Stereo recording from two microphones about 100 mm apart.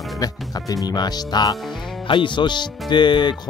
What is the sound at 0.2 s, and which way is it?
Speech, 40° left (ahead or behind).